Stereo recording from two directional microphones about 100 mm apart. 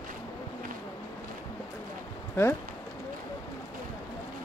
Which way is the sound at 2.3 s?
25° left (ahead or behind).